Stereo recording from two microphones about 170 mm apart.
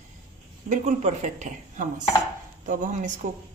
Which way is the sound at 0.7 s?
40° right (ahead or behind).